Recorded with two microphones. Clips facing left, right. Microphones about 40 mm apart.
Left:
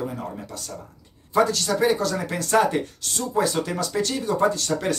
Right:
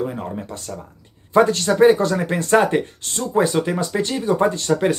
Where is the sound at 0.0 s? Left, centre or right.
Right.